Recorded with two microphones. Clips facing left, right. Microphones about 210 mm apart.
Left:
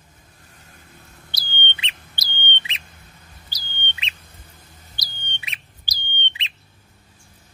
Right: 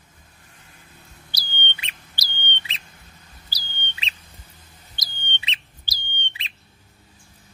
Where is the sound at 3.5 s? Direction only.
35° right (ahead or behind).